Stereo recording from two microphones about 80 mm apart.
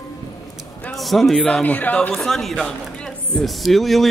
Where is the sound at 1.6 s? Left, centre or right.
Left.